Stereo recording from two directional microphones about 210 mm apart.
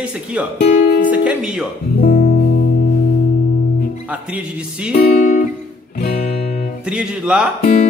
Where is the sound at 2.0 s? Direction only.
45° left (ahead or behind).